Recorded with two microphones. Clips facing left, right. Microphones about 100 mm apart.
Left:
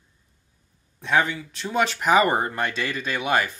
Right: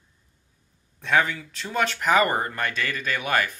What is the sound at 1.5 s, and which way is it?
Speech, 15° left (ahead or behind).